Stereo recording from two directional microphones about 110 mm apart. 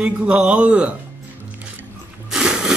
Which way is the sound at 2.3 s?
5° right (ahead or behind).